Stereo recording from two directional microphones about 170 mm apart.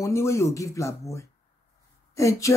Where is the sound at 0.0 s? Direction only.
15° left (ahead or behind).